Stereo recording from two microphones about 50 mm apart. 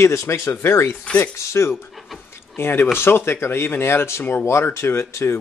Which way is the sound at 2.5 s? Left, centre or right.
Left.